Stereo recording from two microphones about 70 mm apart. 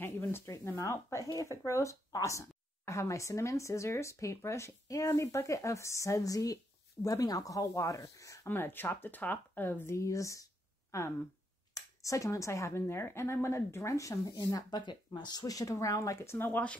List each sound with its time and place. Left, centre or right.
0.0 s a sound: left
0.7 s speech: left
1.6 s speech: left
8.5 s speech: left
9.9 s speech: left
16.3 s speech: left